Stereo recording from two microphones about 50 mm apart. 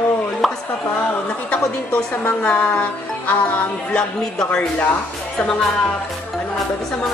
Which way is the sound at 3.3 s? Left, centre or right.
Left.